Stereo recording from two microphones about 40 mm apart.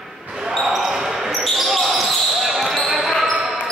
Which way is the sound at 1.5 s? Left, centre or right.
Centre.